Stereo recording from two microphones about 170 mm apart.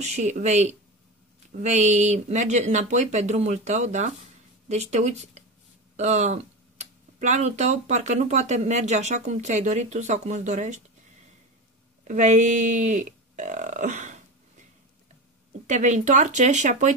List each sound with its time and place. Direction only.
0.0 s speech: 40° right (ahead or behind)
12.0 s speech: 45° right (ahead or behind)
15.6 s speech: 45° right (ahead or behind)